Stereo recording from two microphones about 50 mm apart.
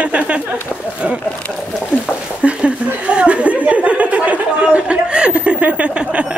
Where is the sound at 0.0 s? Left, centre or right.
Right.